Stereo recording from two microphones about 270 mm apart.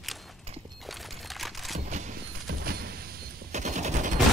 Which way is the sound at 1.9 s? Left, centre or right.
Right.